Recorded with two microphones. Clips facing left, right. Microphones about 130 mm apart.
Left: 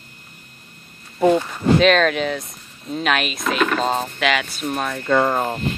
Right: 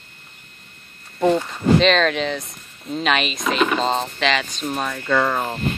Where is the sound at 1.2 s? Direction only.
5° left (ahead or behind).